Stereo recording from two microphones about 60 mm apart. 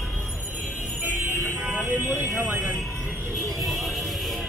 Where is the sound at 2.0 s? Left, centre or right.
Right.